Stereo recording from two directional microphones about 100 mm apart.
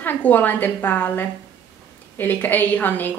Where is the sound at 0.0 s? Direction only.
20° left (ahead or behind).